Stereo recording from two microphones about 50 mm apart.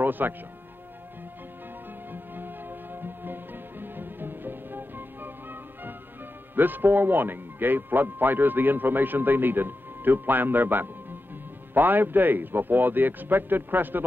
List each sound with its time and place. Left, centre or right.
0.0 s speech: right
2.1 s music: right
6.5 s speech: right